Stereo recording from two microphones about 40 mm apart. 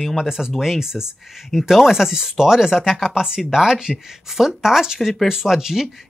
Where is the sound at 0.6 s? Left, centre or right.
Centre.